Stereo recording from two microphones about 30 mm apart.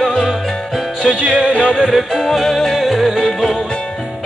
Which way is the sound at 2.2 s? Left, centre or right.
Centre.